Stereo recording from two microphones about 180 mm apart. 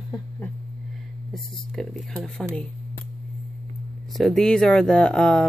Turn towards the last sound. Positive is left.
turn(degrees=5)  # may be behind; listen again after turning